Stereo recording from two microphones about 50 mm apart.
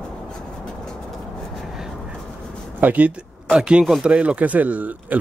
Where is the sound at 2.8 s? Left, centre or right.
Right.